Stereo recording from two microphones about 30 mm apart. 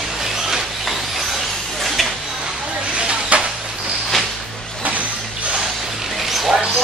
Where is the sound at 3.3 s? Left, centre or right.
Right.